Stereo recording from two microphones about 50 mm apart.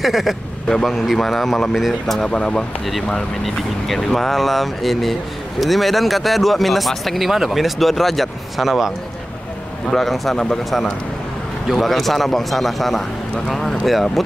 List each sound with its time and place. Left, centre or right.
0.0 s speech: centre
2.1 s speech: centre
9.8 s speech: centre
11.7 s speech: centre